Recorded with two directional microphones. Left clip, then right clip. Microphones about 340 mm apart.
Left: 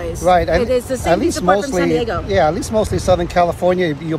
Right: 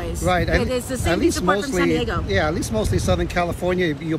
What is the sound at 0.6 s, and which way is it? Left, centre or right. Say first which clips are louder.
Speech: left 7 dB; centre.